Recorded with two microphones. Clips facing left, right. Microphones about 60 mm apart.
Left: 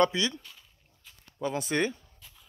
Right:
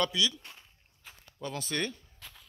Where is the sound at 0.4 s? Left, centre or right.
Right.